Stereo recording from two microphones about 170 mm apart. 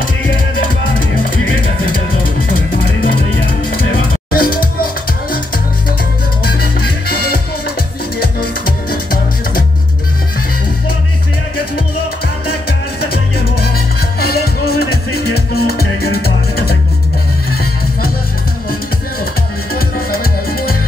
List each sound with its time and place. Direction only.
1.1 s music: 55° left (ahead or behind)
4.3 s music: 60° left (ahead or behind)
6.4 s music: 65° left (ahead or behind)
13.0 s music: 65° left (ahead or behind)
19.7 s music: 60° left (ahead or behind)